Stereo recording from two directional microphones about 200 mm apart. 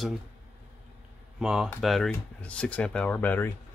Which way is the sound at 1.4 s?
Centre (ahead or behind).